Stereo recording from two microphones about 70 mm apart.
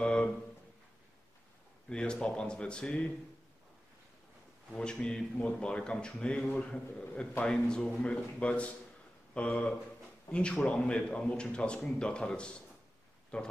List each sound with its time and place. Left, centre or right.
0.0 s a sound: centre
1.9 s speech: centre
4.7 s speech: centre